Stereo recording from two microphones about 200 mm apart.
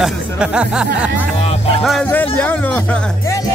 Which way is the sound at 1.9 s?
5° left (ahead or behind).